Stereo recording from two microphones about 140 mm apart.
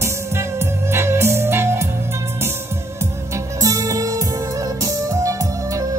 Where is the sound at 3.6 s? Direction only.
25° right (ahead or behind).